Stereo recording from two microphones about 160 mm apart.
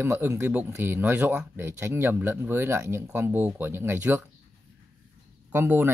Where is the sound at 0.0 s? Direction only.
15° right (ahead or behind).